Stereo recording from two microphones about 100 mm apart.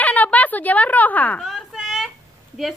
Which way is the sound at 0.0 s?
15° left (ahead or behind).